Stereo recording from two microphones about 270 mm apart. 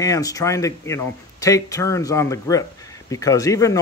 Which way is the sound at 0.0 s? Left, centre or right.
Centre.